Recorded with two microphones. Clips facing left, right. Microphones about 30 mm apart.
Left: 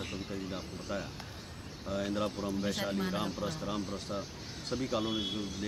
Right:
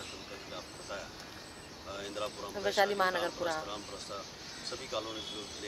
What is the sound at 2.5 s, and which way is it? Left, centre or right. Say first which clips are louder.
Speech: right 10 dB; right.